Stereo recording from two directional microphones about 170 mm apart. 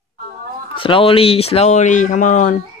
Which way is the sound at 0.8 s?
30° left (ahead or behind).